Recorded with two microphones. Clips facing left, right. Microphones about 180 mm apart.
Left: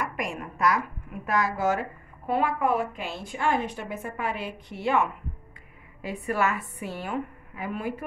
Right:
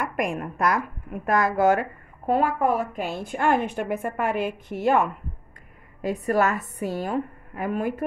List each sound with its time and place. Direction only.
0.0 s a woman's voice: 55° right (ahead or behind)